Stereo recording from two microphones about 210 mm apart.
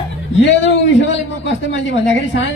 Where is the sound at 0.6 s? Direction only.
55° left (ahead or behind).